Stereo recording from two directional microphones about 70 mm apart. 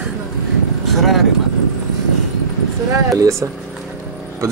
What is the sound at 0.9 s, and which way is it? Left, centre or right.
Speech, centre.